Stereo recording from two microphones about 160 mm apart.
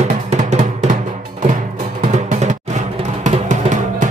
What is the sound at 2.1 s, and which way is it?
Music, 45° right (ahead or behind).